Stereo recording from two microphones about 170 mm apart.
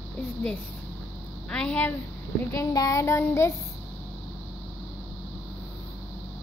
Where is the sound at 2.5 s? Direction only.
20° left (ahead or behind).